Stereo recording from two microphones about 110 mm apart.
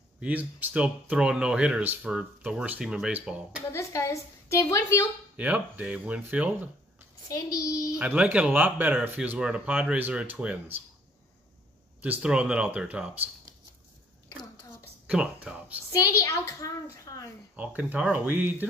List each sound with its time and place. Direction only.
0.2 s speech: 15° right (ahead or behind)
3.7 s a woman's voice: 30° left (ahead or behind)
5.3 s speech: 15° right (ahead or behind)
7.2 s a child's voice: 35° left (ahead or behind)
8.0 s speech: 10° right (ahead or behind)
12.0 s speech: 10° right (ahead or behind)
15.0 s speech: 10° right (ahead or behind)
15.9 s a child's voice: 30° left (ahead or behind)
17.0 s a sound: 30° left (ahead or behind)
17.6 s speech: 15° right (ahead or behind)